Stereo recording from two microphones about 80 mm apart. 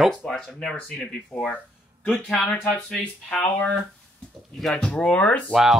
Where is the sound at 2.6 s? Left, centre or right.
Centre.